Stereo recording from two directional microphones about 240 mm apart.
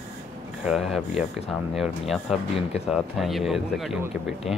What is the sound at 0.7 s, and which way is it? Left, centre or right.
Speech, centre.